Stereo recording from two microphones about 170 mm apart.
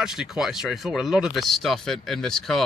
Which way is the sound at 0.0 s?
5° right (ahead or behind).